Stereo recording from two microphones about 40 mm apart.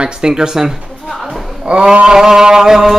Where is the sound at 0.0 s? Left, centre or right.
Centre.